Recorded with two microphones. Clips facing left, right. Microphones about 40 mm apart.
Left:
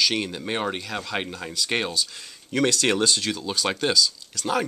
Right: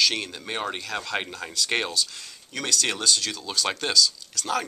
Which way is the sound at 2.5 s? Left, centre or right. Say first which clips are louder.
Left 6 dB; left.